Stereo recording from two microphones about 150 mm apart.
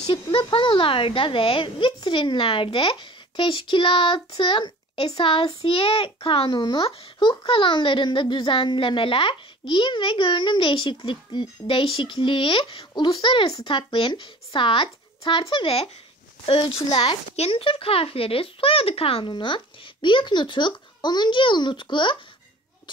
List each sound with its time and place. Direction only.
0.1 s a child's voice: 35° left (ahead or behind)